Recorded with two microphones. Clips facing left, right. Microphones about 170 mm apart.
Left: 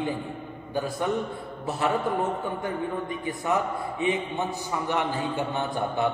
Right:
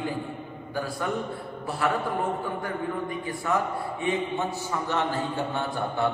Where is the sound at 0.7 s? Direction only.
20° left (ahead or behind).